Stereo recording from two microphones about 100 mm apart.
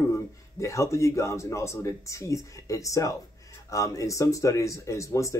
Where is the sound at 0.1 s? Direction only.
30° left (ahead or behind).